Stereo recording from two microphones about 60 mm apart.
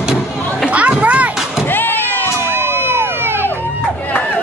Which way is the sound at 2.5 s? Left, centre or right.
Right.